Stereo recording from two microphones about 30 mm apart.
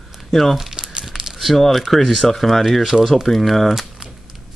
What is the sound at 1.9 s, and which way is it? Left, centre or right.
Speech, centre.